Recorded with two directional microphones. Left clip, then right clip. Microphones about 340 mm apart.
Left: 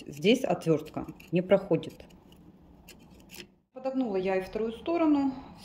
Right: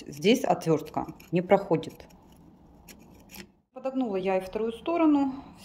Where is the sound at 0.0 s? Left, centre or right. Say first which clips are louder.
Right 1 dB; centre.